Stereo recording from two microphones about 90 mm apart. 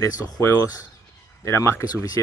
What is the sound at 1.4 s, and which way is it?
Speech, 30° left (ahead or behind).